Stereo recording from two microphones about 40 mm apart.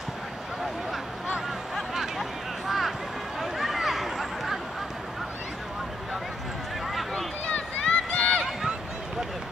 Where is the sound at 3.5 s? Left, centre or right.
Centre.